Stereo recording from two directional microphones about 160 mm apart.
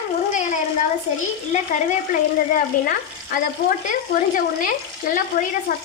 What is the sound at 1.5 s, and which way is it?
Speech, 50° left (ahead or behind).